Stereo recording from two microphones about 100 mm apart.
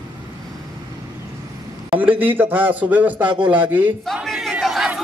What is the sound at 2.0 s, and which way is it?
A man's voice, 20° right (ahead or behind).